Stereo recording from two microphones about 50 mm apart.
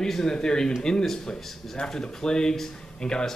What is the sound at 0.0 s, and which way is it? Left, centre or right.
Speech, centre.